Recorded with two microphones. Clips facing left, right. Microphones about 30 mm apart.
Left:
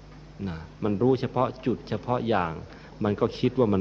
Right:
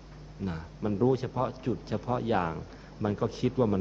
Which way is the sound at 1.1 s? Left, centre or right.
Left.